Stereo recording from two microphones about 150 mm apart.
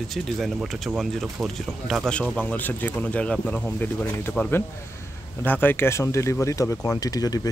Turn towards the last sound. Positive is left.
turn(degrees=25)  # may be behind; listen again after turning